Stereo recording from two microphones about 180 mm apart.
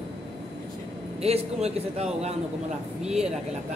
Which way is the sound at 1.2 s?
35° right (ahead or behind).